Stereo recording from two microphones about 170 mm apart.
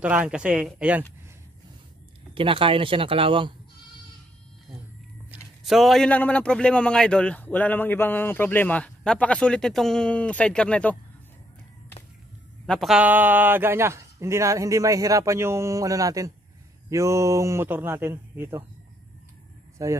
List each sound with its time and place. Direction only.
0.0 s speech: 10° right (ahead or behind)
2.3 s speech: 30° right (ahead or behind)
5.6 s speech: centre (ahead or behind)
12.6 s speech: centre (ahead or behind)
19.8 s speech: 20° right (ahead or behind)